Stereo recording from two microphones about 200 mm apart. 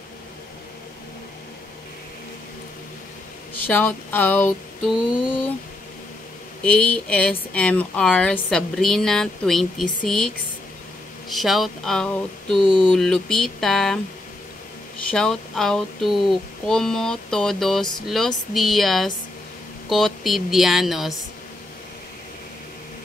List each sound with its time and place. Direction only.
3.5 s a sound: 10° left (ahead or behind)
6.6 s speech: 5° left (ahead or behind)
15.0 s speech: 5° left (ahead or behind)